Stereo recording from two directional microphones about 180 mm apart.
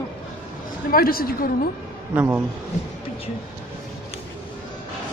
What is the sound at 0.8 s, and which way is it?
Speech, 55° left (ahead or behind).